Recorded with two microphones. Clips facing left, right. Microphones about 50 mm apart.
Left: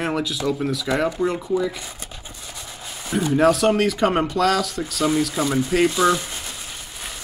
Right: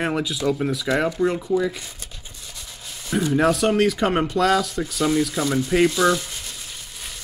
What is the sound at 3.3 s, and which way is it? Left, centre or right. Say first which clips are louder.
Speech: left 2 dB; centre.